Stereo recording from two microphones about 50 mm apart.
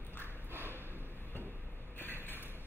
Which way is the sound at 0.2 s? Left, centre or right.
Right.